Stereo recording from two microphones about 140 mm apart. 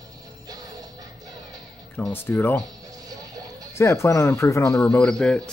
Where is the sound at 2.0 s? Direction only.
10° left (ahead or behind).